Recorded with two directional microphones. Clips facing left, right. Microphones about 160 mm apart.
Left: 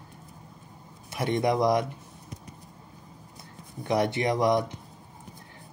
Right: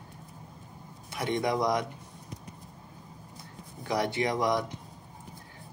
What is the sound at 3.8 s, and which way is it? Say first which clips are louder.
Speech: left 3 dB; 20° left (ahead or behind).